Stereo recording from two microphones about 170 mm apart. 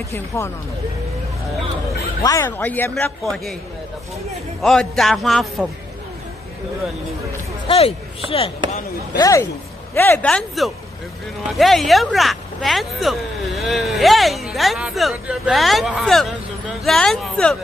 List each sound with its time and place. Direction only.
0.3 s speech: 15° left (ahead or behind)
2.2 s speech: 15° left (ahead or behind)
4.6 s speech: centre (ahead or behind)
7.6 s speech: 35° left (ahead or behind)
9.1 s speech: 20° left (ahead or behind); by 17.6 s centre (ahead or behind)